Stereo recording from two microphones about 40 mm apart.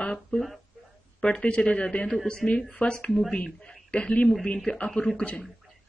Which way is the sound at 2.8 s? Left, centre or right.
Left.